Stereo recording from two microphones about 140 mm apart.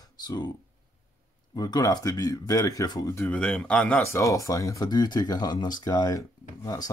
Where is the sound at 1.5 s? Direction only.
30° left (ahead or behind).